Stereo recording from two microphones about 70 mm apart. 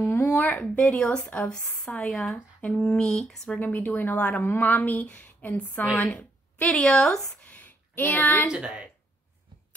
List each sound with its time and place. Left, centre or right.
0.4 s speech: left
3.5 s a woman's voice: left
6.8 s speech: centre
7.4 s a sound: left
8.5 s a woman's voice: centre